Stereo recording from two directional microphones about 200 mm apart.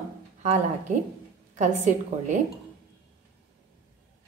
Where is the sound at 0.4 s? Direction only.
35° right (ahead or behind).